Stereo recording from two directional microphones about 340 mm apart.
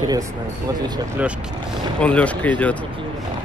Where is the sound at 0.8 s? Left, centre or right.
Centre.